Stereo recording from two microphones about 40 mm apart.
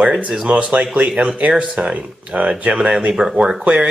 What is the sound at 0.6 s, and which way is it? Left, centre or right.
Speech, right.